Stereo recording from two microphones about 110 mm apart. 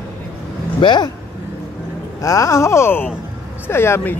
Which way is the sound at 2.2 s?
30° left (ahead or behind).